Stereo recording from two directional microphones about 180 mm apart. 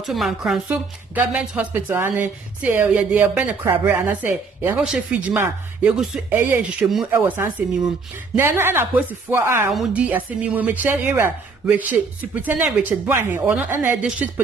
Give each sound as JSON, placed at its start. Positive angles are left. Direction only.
{"t": 0.0, "sound": "a woman's voice", "side_deg": 0}